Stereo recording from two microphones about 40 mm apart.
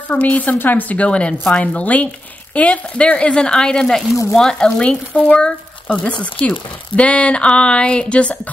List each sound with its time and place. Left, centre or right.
0.1 s speech: left
0.6 s speech: left
0.9 s speech: left
5.9 s speech: left